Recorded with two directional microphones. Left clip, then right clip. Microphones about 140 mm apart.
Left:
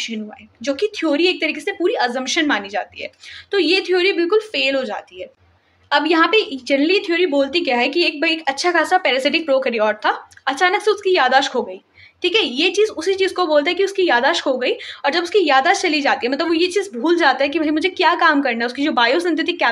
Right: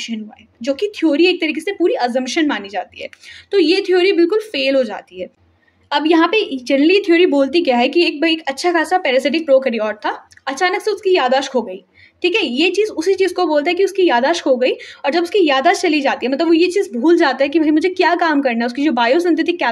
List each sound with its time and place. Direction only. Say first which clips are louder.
0.0 s a woman's voice: left 1 dB; 30° right (ahead or behind)